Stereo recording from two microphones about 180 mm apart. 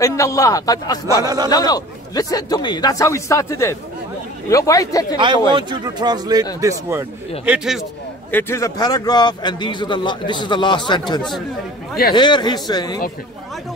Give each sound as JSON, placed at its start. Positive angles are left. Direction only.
{"t": 0.0, "sound": "a man's voice", "side_deg": 15}
{"t": 1.2, "sound": "speech", "side_deg": -20}
{"t": 1.5, "sound": "a man's voice", "side_deg": 20}
{"t": 5.5, "sound": "speech", "side_deg": -25}
{"t": 8.3, "sound": "a man's voice", "side_deg": 10}